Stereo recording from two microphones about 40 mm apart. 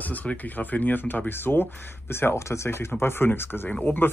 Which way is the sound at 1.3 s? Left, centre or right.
Left.